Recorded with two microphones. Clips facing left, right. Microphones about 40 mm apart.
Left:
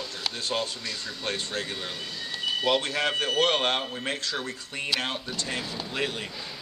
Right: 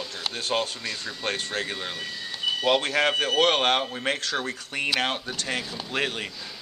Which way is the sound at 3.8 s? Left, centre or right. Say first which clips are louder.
Right 3 dB; centre.